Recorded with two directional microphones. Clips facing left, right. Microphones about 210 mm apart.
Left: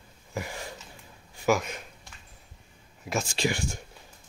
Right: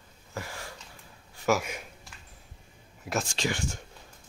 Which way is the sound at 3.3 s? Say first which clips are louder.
Left 2 dB; 10° left (ahead or behind).